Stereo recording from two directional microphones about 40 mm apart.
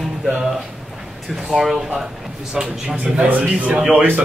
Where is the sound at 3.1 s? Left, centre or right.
Right.